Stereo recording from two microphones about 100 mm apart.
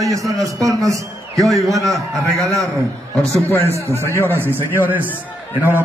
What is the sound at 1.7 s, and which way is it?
Speech, 35° right (ahead or behind).